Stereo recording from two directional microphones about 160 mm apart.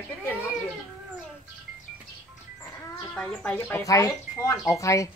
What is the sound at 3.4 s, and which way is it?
Speech, 15° left (ahead or behind).